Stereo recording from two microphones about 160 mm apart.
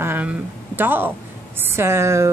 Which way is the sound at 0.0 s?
10° right (ahead or behind).